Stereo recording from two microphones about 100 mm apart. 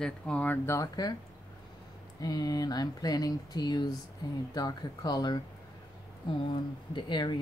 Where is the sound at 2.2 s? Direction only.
40° left (ahead or behind).